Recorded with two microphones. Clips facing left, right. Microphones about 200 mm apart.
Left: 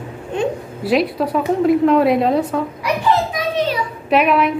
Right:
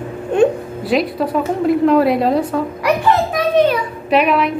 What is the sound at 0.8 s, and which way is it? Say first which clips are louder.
A woman's voice: even; centre (ahead or behind).